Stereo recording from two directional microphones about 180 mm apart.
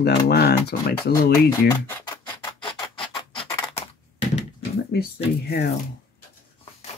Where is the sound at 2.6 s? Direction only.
25° left (ahead or behind).